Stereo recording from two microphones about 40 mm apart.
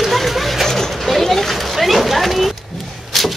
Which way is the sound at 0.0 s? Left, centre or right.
Centre.